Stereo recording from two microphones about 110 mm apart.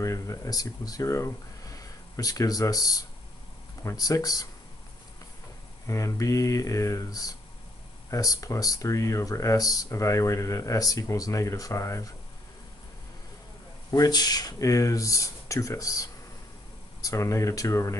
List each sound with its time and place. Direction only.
0.0 s speech: 30° left (ahead or behind)
5.9 s speech: 30° left (ahead or behind)
13.8 s speech: 35° left (ahead or behind)